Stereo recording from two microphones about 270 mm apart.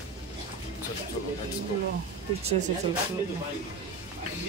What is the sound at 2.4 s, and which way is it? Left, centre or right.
Speech, right.